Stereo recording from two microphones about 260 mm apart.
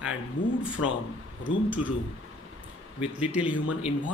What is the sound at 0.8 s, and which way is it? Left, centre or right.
Speech, left.